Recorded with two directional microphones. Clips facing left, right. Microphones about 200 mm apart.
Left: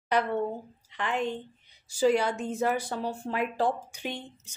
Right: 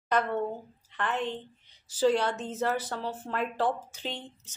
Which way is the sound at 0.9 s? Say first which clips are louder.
Left 1 dB; 15° left (ahead or behind).